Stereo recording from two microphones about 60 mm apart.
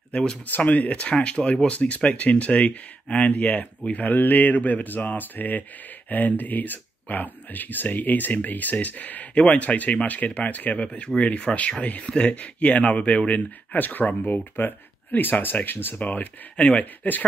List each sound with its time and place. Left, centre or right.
0.1 s speech: centre
0.5 s speech: left